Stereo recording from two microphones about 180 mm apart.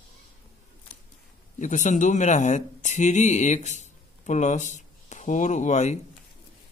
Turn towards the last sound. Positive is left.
turn(degrees=40)  # may be behind; listen again after turning